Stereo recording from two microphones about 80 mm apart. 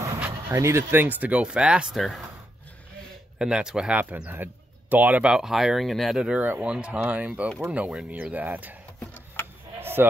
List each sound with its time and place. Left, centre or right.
0.5 s speech: right
1.0 s speech: centre
2.0 s speech: centre
3.3 s speech: centre
4.0 s speech: centre
5.3 s speech: centre
9.8 s bleat: right